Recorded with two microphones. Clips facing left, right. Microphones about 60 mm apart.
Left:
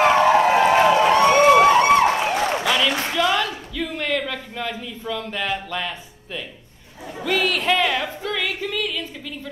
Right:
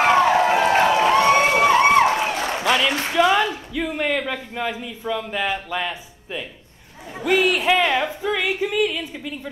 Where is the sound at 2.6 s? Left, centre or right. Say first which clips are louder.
Right 1 dB; centre.